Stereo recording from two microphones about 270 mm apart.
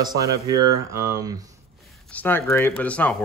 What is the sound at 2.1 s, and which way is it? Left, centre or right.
Speech, centre.